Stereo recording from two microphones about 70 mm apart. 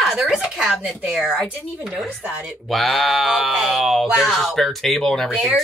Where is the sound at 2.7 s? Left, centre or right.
Centre.